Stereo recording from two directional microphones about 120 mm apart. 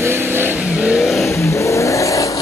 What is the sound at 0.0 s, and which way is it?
Vehicle, 20° right (ahead or behind).